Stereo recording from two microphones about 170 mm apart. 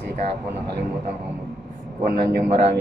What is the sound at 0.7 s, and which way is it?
Speech, 75° right (ahead or behind).